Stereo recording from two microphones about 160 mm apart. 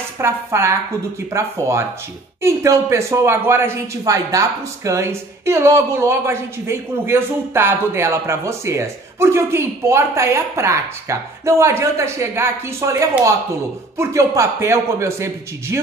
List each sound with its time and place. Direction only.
0.2 s speech: 15° right (ahead or behind)